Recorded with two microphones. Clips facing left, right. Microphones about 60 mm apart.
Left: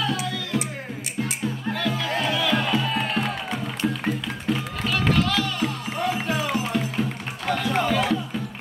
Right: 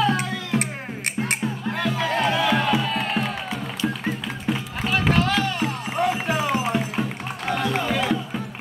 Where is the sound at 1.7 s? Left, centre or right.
Right.